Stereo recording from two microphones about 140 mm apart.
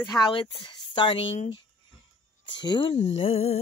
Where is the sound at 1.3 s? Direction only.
45° left (ahead or behind).